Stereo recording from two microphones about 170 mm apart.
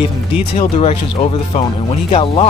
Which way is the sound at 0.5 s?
35° left (ahead or behind).